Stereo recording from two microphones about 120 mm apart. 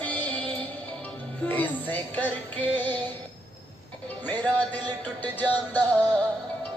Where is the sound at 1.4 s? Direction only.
15° left (ahead or behind).